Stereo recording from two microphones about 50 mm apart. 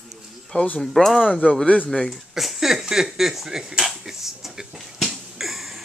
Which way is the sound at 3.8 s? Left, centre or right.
Centre.